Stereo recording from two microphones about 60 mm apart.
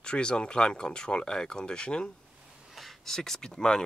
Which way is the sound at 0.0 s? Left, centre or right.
Centre.